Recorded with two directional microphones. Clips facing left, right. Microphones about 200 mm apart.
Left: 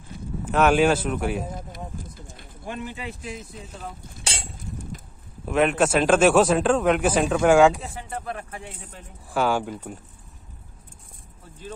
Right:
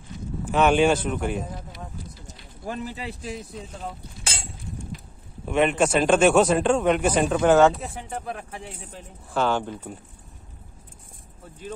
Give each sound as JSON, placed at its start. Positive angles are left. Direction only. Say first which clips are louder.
{"t": 0.5, "sound": "a man's voice", "louder": "even", "side_deg": 0}
{"t": 2.6, "sound": "speech", "louder": "right 1 dB", "side_deg": -40}
{"t": 5.4, "sound": "a man's voice", "louder": "even", "side_deg": 0}
{"t": 7.8, "sound": "speech", "louder": "right 1 dB", "side_deg": -5}
{"t": 9.3, "sound": "speech", "louder": "left 1 dB", "side_deg": 10}